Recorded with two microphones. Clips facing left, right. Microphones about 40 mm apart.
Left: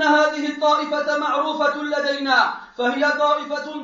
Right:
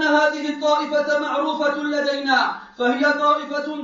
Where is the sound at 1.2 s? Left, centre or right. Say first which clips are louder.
Left 1 dB; left.